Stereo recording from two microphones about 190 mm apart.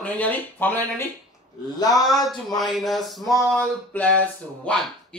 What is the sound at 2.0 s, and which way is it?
Speech, centre (ahead or behind).